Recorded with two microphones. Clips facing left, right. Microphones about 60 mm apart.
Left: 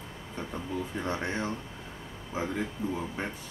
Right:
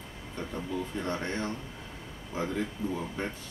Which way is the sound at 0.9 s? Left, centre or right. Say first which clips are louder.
Left 2 dB; centre.